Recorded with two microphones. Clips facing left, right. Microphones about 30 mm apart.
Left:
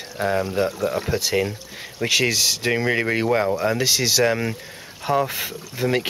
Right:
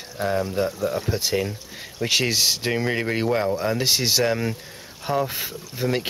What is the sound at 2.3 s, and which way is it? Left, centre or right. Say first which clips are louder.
Speech: even; centre.